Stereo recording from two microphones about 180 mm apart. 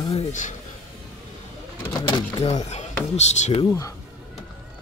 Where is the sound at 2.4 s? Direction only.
40° left (ahead or behind).